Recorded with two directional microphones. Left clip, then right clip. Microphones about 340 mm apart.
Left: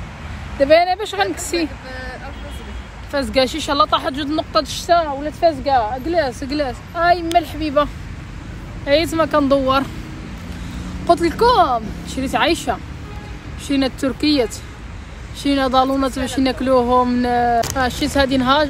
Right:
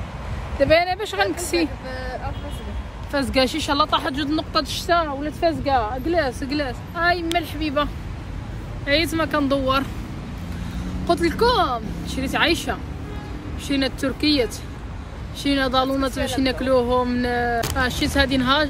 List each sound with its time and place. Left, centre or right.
0.6 s speech: centre
1.9 s speech: right
3.1 s speech: centre
11.1 s speech: centre